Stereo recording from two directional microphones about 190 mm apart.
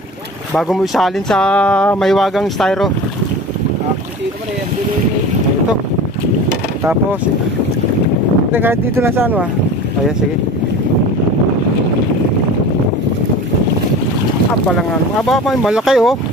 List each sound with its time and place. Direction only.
0.6 s speech: centre (ahead or behind)
6.8 s speech: 10° right (ahead or behind)
8.5 s speech: 10° right (ahead or behind)
14.8 s speech: centre (ahead or behind)